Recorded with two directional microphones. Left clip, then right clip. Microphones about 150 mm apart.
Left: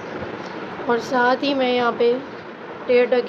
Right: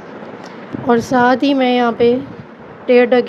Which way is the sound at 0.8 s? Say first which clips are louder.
Right 6 dB; 50° right (ahead or behind).